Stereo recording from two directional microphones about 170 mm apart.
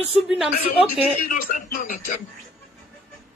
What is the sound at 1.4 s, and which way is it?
Speech, 55° left (ahead or behind).